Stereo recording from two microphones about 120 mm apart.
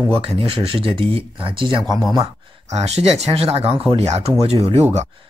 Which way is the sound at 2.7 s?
60° right (ahead or behind).